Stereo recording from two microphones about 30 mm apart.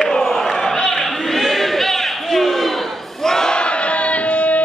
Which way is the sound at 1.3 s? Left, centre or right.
Centre.